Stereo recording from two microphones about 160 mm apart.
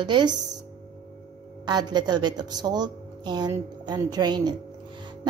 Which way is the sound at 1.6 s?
25° right (ahead or behind).